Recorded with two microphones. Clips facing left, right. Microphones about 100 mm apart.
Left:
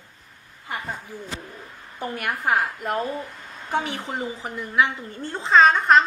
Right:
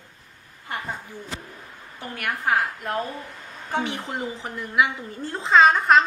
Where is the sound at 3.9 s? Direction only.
Centre (ahead or behind).